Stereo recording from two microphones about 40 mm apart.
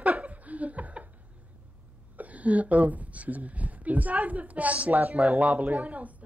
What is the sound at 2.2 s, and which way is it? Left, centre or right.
Speech, right.